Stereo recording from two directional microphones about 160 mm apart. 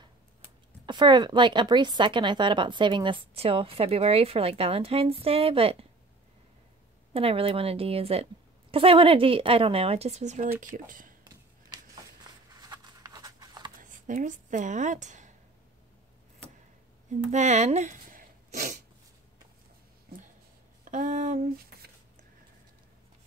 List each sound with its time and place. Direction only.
0.8 s speech: 30° right (ahead or behind)
7.2 s speech: 35° right (ahead or behind)
10.9 s speech: 55° right (ahead or behind)
11.2 s a sound: 25° right (ahead or behind)
13.7 s speech: 55° right (ahead or behind)
17.1 s speech: 45° right (ahead or behind)
20.8 s a sound: 55° right (ahead or behind)